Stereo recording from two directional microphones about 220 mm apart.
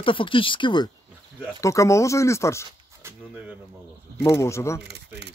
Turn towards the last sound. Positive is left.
turn(degrees=10)  # may be behind; listen again after turning